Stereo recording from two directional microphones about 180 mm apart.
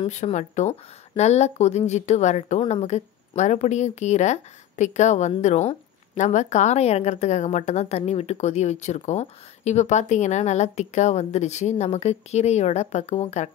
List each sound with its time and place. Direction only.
0.0 s a woman's voice: 40° left (ahead or behind)